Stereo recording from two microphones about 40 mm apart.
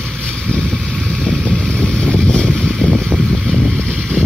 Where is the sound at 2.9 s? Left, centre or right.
Centre.